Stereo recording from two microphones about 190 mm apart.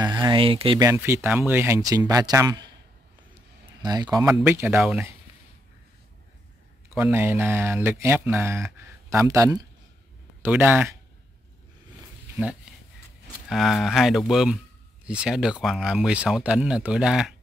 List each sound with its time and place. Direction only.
0.0 s speech: 25° right (ahead or behind)
0.8 s speech: 15° right (ahead or behind)
3.8 s speech: 20° right (ahead or behind)
4.3 s speech: 10° right (ahead or behind)
7.0 s speech: 10° right (ahead or behind)
13.5 s speech: centre (ahead or behind)